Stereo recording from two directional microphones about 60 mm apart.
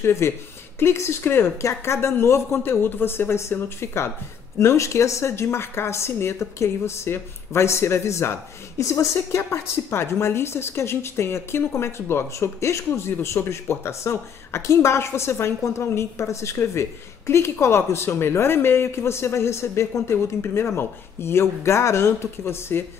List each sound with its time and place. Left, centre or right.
0.0 s a woman's voice: left
1.2 s speech: left
1.6 s a woman's voice: left